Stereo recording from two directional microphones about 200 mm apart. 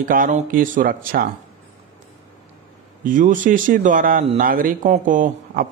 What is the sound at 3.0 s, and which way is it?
Speech, 40° right (ahead or behind).